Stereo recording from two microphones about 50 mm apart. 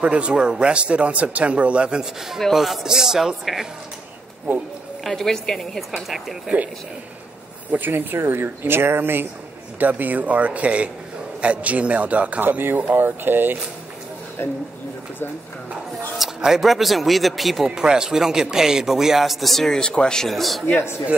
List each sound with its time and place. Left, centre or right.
0.0 s speech: right
2.5 s a woman's voice: centre
5.0 s a woman's voice: centre
7.7 s speech: right
9.8 s speech: right
16.3 s a woman's voice: centre
17.6 s a man's voice: centre
20.2 s a woman's voice: centre